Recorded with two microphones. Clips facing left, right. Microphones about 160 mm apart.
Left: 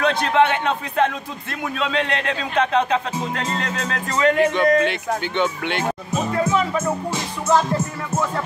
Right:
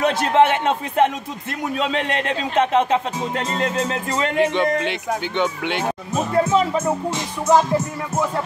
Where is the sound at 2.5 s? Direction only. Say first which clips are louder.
Right 2 dB; 25° right (ahead or behind).